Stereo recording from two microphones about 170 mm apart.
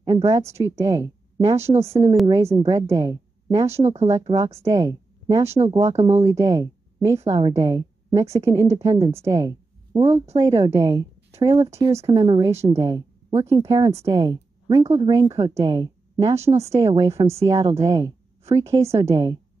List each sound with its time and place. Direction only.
0.0 s speech: 20° right (ahead or behind)
1.7 s a woman's voice: 40° right (ahead or behind)
2.2 s a woman's voice: 15° right (ahead or behind)
3.8 s a woman's voice: 40° right (ahead or behind)
4.6 s a woman's voice: 20° right (ahead or behind)
5.9 s a woman's voice: 40° right (ahead or behind)
6.2 s speech: 20° right (ahead or behind)
7.2 s a woman's voice: 35° right (ahead or behind)
7.5 s speech: 20° right (ahead or behind)
9.9 s a woman's voice: 40° right (ahead or behind)
10.3 s a woman's voice: 20° right (ahead or behind)
12.1 s a woman's voice: 25° right (ahead or behind)